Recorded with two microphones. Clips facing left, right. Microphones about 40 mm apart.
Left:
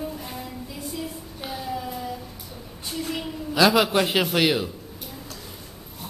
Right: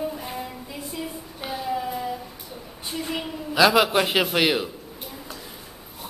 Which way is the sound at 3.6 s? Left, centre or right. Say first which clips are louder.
Right 1 dB; centre.